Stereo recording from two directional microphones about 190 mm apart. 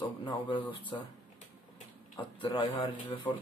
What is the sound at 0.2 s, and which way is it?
Speech, 25° left (ahead or behind).